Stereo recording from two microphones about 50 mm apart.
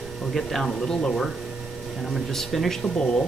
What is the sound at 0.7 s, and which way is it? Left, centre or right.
Speech, centre.